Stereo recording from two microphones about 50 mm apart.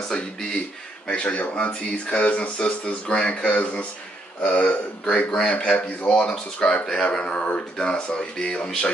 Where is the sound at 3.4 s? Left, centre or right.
Left.